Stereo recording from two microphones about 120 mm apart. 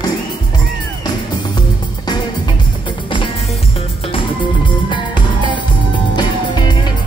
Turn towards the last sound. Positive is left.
turn(degrees=35)  # may be behind; listen again after turning